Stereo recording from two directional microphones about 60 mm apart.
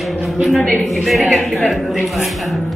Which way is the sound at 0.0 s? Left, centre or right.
Centre.